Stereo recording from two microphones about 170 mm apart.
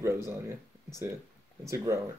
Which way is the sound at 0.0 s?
15° right (ahead or behind).